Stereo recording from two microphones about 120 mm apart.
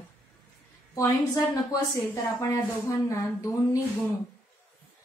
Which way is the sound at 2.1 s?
25° left (ahead or behind).